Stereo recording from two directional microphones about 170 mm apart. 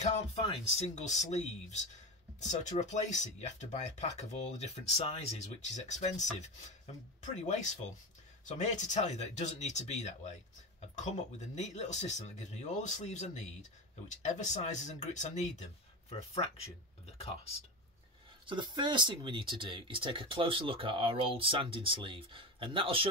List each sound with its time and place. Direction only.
0.0 s speech: 40° left (ahead or behind)
2.8 s speech: 40° left (ahead or behind)
7.4 s speech: 45° left (ahead or behind)
11.3 s speech: 40° left (ahead or behind)
18.5 s speech: 25° right (ahead or behind)